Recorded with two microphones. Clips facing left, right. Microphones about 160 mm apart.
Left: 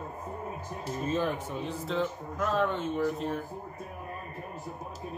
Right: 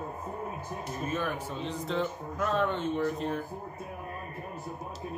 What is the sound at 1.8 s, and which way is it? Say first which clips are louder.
Speech: even; centre (ahead or behind).